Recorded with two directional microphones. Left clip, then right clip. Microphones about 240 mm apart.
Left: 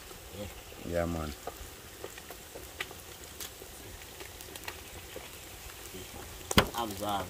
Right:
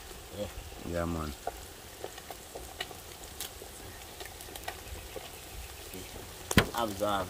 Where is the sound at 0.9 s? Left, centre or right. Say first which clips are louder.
Left 2 dB; centre.